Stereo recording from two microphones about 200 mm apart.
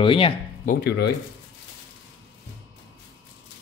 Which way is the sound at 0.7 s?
55° left (ahead or behind).